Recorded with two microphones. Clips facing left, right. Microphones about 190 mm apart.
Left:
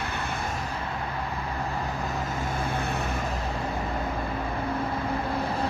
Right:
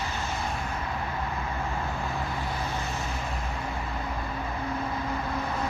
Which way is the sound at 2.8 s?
60° left (ahead or behind).